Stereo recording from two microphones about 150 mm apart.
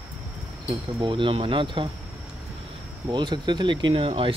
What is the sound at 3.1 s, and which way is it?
Speech, 30° right (ahead or behind).